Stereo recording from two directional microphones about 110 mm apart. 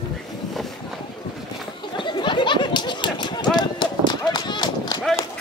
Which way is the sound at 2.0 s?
45° left (ahead or behind).